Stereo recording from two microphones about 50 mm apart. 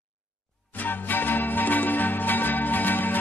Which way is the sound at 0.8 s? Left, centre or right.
Left.